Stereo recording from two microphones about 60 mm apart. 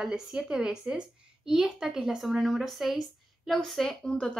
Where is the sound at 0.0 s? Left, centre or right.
Centre.